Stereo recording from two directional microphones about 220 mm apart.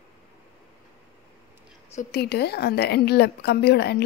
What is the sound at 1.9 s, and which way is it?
A woman's voice, 40° left (ahead or behind).